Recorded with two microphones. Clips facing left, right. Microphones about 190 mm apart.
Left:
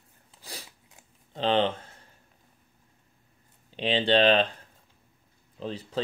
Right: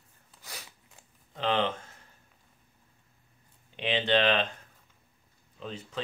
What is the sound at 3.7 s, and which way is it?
Speech, 30° left (ahead or behind).